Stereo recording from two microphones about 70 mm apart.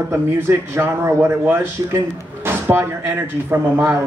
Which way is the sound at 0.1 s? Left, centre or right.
Right.